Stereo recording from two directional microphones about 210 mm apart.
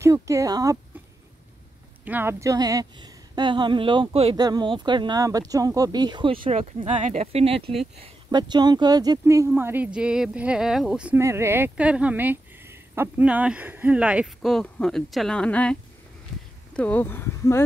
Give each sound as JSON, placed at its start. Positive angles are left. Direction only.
{"t": 0.0, "sound": "speech", "side_deg": -15}
{"t": 2.0, "sound": "speech", "side_deg": -10}